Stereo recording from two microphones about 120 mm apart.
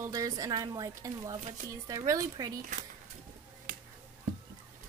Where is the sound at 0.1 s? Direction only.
30° right (ahead or behind).